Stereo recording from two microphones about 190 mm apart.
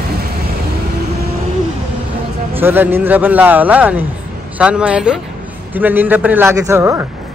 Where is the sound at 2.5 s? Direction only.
10° right (ahead or behind).